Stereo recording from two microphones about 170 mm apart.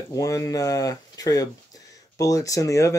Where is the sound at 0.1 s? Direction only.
20° left (ahead or behind).